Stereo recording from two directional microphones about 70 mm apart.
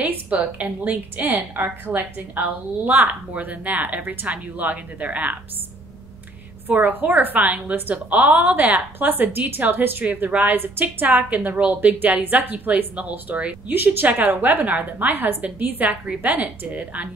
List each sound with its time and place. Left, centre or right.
0.0 s a woman's voice: right
6.7 s a woman's voice: right